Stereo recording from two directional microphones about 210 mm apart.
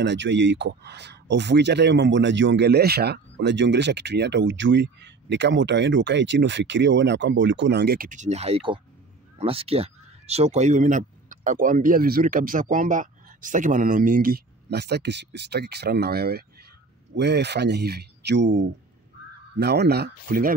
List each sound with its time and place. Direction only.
0.0 s speech: 60° right (ahead or behind)